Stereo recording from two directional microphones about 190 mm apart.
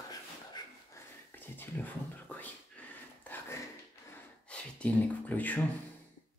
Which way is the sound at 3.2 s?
10° left (ahead or behind).